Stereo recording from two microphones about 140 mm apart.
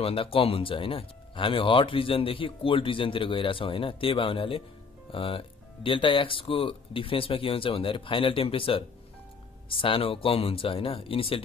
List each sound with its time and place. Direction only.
0.0 s speech: 40° left (ahead or behind)